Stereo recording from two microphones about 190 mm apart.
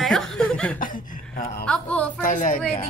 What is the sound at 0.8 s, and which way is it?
Speech, 45° left (ahead or behind).